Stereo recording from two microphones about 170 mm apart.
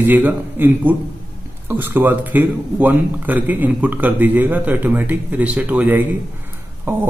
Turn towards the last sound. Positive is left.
turn(degrees=-15)  # may be behind; listen again after turning